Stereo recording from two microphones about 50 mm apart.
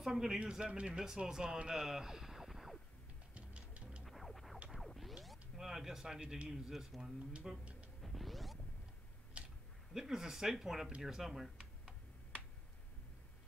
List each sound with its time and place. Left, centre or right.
0.0 s speech: centre
3.3 s music: right
4.0 s a sound: centre
4.6 s music: centre
6.5 s speech: centre
8.0 s music: centre
9.4 s a sound: right
9.9 s speech: centre